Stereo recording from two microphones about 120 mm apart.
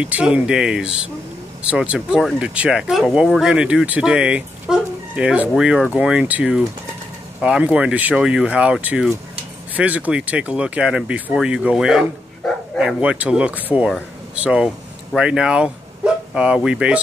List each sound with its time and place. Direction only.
0.0 s speech: 10° right (ahead or behind)